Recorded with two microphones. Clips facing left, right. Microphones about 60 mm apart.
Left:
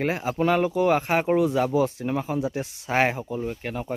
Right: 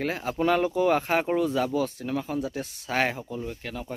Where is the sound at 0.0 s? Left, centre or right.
Centre.